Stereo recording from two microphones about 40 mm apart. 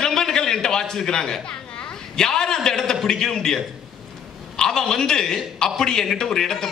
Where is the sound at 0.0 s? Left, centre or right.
Centre.